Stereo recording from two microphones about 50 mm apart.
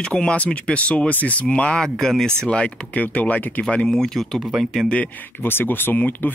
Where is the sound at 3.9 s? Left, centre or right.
Centre.